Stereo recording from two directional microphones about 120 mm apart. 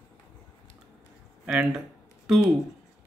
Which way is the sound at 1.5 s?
5° right (ahead or behind).